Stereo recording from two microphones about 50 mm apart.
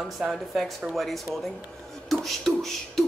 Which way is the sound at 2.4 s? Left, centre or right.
Centre.